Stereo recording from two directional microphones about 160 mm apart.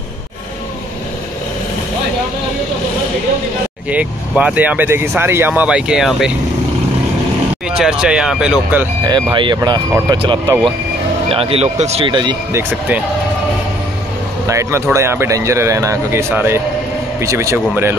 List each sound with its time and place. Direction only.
3.9 s speech: 5° right (ahead or behind)
7.7 s speech: 5° right (ahead or behind)
9.0 s speech: 30° right (ahead or behind)
12.5 s speech: 10° right (ahead or behind)
14.5 s speech: 15° right (ahead or behind)